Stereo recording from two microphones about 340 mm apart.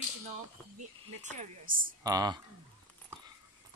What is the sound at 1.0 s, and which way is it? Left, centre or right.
Speech, right.